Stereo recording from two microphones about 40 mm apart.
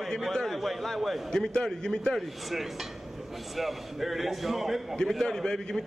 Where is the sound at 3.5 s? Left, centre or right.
Centre.